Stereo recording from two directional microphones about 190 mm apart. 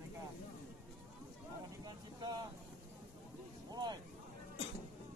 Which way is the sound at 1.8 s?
20° right (ahead or behind).